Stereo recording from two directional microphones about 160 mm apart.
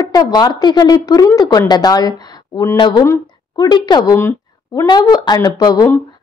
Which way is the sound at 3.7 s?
30° left (ahead or behind).